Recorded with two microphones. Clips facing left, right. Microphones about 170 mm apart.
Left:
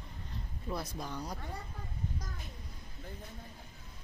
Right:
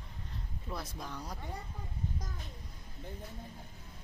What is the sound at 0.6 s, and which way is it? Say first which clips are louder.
Speech: left 3 dB; centre (ahead or behind).